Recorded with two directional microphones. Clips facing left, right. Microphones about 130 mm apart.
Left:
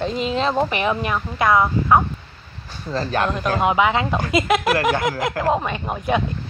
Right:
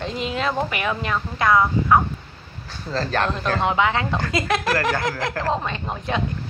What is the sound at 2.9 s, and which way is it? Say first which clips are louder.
Speech: left 1 dB; 10° left (ahead or behind).